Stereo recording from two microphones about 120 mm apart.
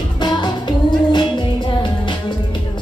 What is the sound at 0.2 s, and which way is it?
Music, 40° left (ahead or behind).